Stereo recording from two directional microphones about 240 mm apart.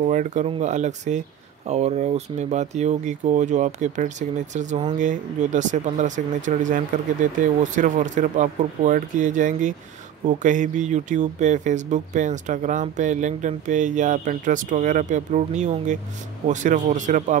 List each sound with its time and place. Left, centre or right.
0.0 s speech: right